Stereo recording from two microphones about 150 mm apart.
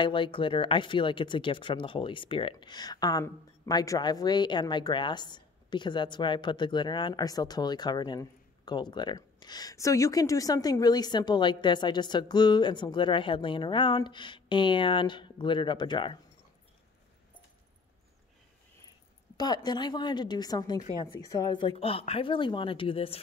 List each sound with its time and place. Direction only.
0.0 s speech: 35° left (ahead or behind)
19.3 s a woman's voice: 25° left (ahead or behind)